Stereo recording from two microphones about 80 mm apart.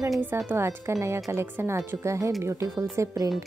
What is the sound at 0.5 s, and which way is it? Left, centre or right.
Speech, right.